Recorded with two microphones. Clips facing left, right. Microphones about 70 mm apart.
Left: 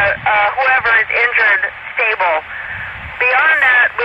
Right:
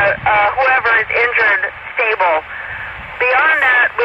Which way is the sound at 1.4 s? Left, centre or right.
Left.